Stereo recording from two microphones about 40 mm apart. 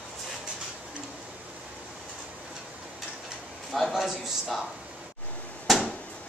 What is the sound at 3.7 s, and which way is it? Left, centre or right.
Speech, centre.